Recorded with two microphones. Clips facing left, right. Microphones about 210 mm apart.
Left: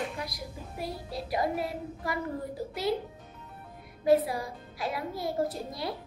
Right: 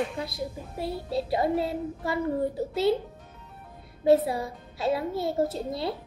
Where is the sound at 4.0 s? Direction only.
25° right (ahead or behind).